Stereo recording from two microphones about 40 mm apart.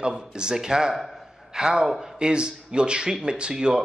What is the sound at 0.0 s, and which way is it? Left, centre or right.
A man's voice, centre.